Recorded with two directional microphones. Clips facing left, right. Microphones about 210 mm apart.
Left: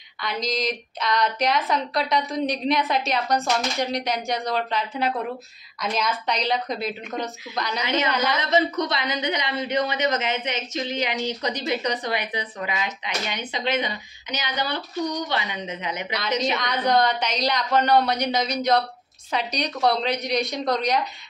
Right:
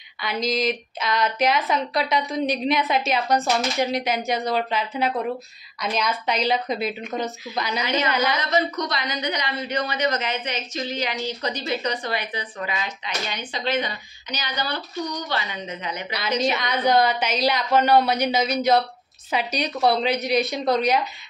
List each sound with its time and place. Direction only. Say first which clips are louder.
0.2 s a woman's voice: right 3 dB; 5° right (ahead or behind)
7.8 s a woman's voice: even; 20° left (ahead or behind)
8.1 s a woman's voice: right 1 dB; centre (ahead or behind)
8.4 s a woman's voice: left 2 dB; 25° left (ahead or behind)
16.4 s a woman's voice: right 4 dB; 5° right (ahead or behind)